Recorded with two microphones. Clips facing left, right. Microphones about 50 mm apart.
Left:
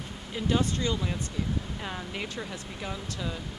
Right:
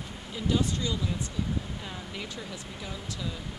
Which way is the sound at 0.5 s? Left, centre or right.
Left.